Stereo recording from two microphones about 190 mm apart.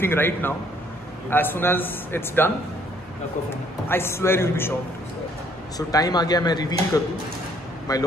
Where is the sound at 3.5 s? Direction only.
10° left (ahead or behind).